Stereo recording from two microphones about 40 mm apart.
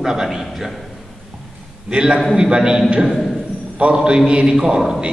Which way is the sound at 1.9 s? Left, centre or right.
Right.